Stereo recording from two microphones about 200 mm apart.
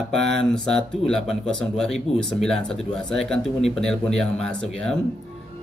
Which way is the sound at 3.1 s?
5° left (ahead or behind).